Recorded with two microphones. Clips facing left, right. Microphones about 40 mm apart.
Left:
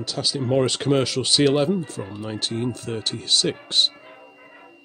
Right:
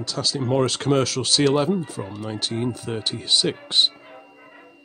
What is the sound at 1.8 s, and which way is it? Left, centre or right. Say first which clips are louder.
Speech: even; centre.